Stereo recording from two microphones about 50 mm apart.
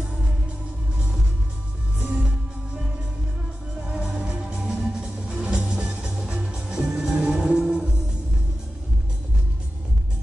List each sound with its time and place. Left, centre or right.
3.8 s music: centre